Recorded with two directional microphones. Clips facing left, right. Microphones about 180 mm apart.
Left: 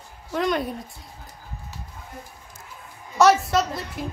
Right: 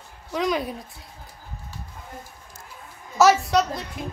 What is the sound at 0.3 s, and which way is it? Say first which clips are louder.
Speech: left 1 dB; centre (ahead or behind).